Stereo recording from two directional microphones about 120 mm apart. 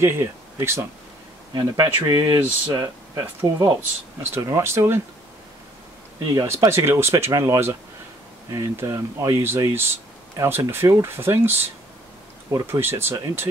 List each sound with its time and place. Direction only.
0.0 s speech: 20° right (ahead or behind)
6.2 s speech: 25° right (ahead or behind)
9.4 s speech: 20° right (ahead or behind)